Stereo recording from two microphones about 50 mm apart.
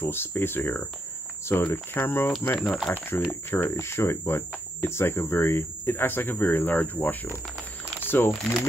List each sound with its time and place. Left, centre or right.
0.0 s speech: left
3.7 s speech: left